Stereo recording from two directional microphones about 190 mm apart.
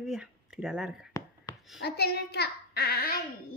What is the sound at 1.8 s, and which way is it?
Child singing, 60° left (ahead or behind).